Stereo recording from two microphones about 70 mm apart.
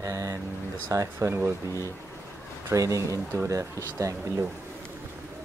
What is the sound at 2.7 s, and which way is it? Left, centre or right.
Speech, right.